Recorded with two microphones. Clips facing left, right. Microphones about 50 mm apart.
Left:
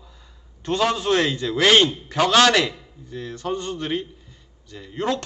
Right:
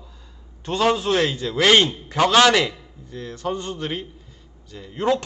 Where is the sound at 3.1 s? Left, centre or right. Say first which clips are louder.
Even; centre.